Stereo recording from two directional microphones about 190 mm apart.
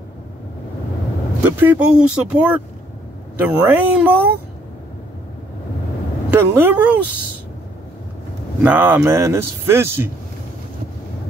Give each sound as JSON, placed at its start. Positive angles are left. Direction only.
{"t": 1.4, "sound": "a man's voice", "side_deg": -10}
{"t": 6.3, "sound": "a man's voice", "side_deg": -10}
{"t": 8.6, "sound": "a man's voice", "side_deg": -10}